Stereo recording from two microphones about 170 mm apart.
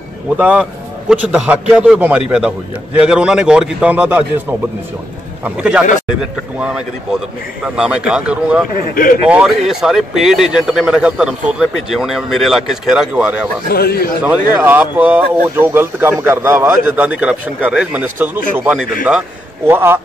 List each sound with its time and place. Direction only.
0.4 s a man's voice: 5° right (ahead or behind)
13.7 s a man's voice: 65° left (ahead or behind)
14.6 s a man's voice: 10° right (ahead or behind)